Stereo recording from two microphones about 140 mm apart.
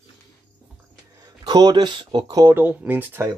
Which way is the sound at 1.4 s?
30° right (ahead or behind).